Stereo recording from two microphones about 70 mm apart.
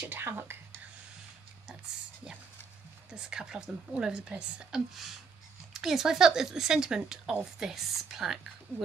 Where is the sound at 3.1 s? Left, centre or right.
Centre.